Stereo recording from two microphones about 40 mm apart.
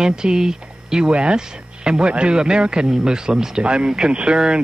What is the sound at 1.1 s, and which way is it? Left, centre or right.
Speech, right.